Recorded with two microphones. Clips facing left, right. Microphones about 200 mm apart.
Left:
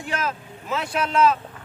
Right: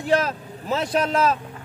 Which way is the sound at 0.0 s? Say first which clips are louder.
Right 7 dB; 35° right (ahead or behind).